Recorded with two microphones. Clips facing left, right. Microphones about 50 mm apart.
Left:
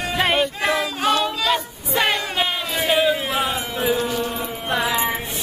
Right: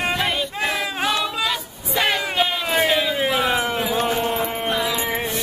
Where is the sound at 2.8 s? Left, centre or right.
Centre.